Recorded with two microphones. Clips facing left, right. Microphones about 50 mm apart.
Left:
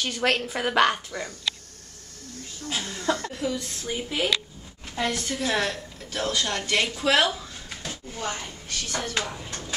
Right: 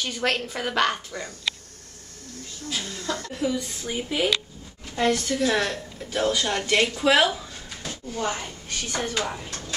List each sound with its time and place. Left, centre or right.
0.0 s a woman's voice: centre
2.8 s chuckle: left
3.3 s a woman's voice: centre
7.7 s a sound: centre
8.2 s speech: centre